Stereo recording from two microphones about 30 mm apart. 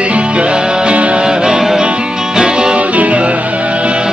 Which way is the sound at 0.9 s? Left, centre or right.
Right.